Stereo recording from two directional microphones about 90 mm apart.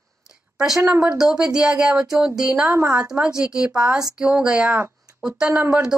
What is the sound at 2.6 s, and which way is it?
Speech, 30° right (ahead or behind).